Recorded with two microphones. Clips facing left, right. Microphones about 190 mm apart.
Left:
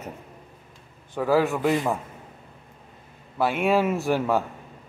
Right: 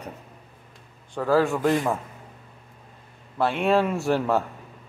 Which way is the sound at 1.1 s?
10° left (ahead or behind).